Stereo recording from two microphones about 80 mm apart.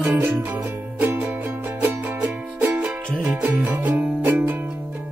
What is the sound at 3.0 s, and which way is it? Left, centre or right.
Music, centre.